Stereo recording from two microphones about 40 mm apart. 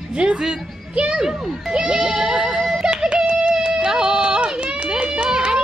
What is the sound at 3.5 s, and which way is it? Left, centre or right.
Music, right.